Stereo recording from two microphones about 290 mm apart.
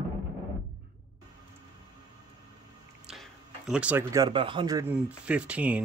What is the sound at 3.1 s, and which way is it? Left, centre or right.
Speech, centre.